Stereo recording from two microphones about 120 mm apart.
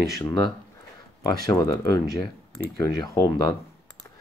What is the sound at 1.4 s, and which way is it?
Speech, 35° left (ahead or behind).